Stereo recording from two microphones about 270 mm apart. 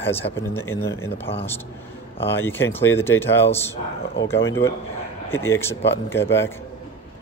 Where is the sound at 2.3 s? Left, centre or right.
Centre.